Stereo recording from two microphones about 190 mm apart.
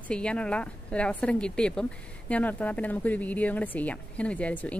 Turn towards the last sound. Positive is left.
turn(degrees=5)  # may be behind; listen again after turning